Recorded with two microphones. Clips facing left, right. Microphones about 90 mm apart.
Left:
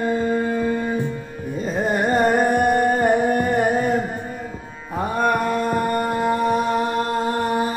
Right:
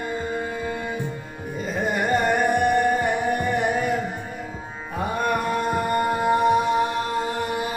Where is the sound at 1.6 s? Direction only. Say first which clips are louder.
Left 3 dB; 35° left (ahead or behind).